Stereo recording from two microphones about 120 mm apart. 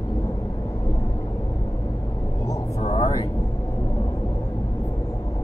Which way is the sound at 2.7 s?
65° left (ahead or behind).